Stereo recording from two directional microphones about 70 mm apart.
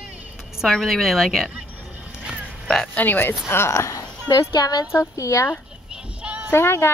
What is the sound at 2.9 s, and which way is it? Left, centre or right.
A woman's voice, left.